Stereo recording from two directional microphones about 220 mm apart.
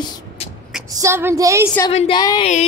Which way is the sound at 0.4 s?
25° left (ahead or behind).